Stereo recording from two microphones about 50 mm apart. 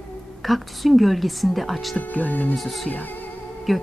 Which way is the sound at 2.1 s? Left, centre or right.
Left.